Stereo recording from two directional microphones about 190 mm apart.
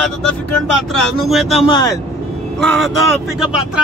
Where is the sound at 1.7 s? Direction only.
20° left (ahead or behind).